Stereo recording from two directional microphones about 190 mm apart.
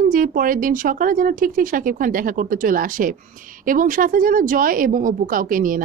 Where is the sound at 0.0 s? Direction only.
45° right (ahead or behind).